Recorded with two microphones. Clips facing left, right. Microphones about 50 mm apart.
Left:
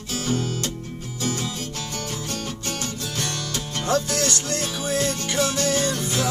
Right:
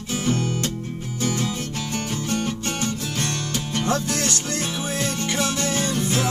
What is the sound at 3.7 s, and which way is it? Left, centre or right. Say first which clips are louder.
Music: left 1 dB; right.